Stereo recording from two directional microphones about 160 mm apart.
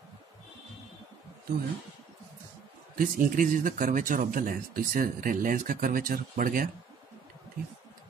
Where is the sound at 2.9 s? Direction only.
60° right (ahead or behind).